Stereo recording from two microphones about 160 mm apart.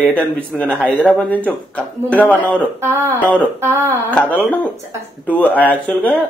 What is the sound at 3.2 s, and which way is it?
Speech, 10° left (ahead or behind).